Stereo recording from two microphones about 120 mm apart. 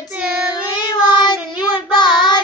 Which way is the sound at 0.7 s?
40° left (ahead or behind).